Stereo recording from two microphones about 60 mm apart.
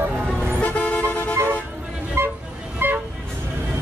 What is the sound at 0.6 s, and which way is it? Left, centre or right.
Vehicle, left.